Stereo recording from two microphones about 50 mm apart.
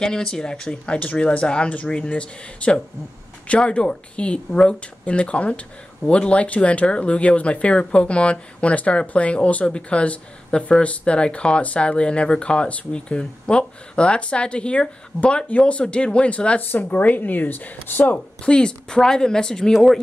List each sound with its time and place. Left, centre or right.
0.0 s speech: centre; by 18.1 s left
18.1 s speech: centre